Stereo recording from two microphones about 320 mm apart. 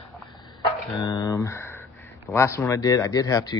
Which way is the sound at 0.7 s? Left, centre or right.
Centre.